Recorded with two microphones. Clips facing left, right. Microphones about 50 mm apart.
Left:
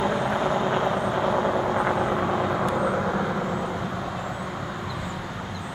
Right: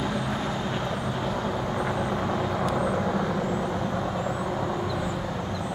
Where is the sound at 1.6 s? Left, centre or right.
Centre.